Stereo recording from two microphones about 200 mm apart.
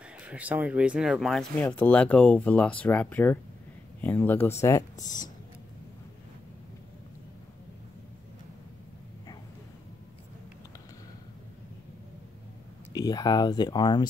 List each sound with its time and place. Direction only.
0.2 s speech: 5° right (ahead or behind); by 4.8 s 15° left (ahead or behind)
12.9 s speech: 20° left (ahead or behind)